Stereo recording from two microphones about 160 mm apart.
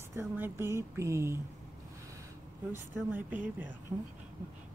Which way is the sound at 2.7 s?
10° right (ahead or behind).